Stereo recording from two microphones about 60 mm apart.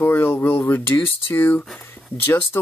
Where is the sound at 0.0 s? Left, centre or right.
Left.